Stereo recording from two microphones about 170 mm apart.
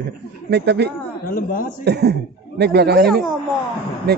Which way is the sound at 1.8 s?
75° right (ahead or behind).